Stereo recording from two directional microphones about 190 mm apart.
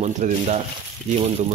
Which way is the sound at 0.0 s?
35° right (ahead or behind).